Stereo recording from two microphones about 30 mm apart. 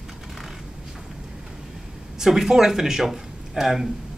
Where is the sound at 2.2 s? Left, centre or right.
Centre.